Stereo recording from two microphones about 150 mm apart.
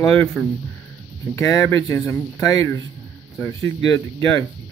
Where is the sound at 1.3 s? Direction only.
20° left (ahead or behind).